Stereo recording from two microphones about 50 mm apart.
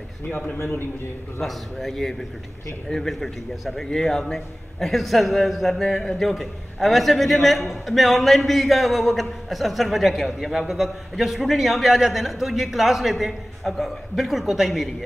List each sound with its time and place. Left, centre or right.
0.6 s a man's voice: left
1.4 s a man's voice: centre